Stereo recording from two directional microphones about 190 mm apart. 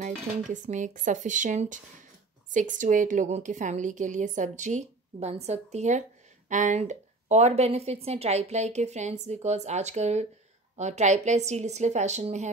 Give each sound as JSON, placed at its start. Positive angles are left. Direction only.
{"t": 0.4, "sound": "speech", "side_deg": -40}